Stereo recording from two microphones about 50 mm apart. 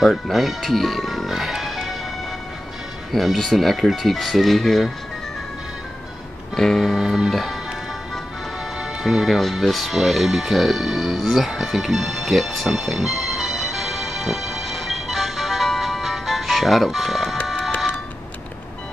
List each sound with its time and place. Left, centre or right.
0.0 s speech: centre
3.1 s speech: centre
6.5 s speech: centre
9.0 s music: centre